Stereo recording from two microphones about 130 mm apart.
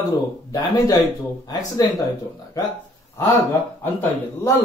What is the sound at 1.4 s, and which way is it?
Speech, 30° left (ahead or behind).